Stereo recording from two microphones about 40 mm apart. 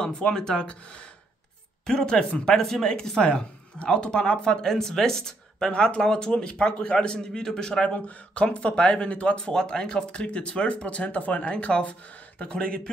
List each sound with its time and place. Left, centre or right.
0.0 s speech: centre
0.7 s speech: left
1.9 s speech: centre
3.2 s speech: left
5.7 s speech: left
7.8 s speech: left
9.4 s speech: centre